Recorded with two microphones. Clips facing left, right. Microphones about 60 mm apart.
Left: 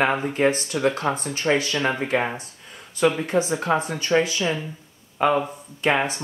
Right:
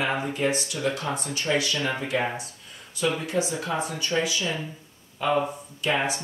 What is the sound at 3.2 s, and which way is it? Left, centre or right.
Speech, left.